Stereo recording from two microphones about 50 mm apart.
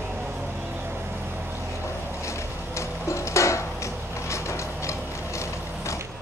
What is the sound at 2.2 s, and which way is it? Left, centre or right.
Music, left.